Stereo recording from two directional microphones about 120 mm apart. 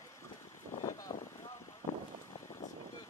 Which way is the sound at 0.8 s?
30° left (ahead or behind).